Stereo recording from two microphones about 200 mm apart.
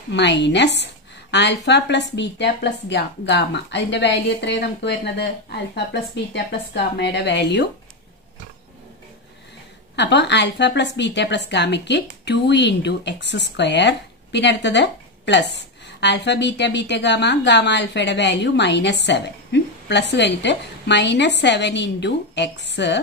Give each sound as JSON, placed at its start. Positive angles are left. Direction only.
{"t": 0.1, "sound": "a woman's voice", "side_deg": 60}
{"t": 9.9, "sound": "a woman's voice", "side_deg": 60}